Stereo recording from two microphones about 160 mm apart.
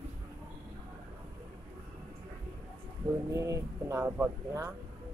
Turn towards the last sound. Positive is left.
turn(degrees=-15)  # may be behind; listen again after turning